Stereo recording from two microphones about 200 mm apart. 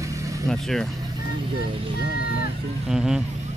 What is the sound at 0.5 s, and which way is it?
Speech, centre (ahead or behind).